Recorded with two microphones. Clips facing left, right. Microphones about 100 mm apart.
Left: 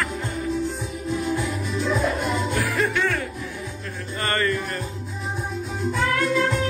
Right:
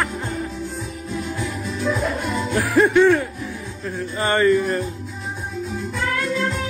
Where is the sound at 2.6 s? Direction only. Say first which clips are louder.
Right 12 dB; 30° right (ahead or behind).